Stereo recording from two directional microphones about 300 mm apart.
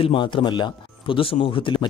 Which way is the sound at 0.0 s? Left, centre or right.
Centre.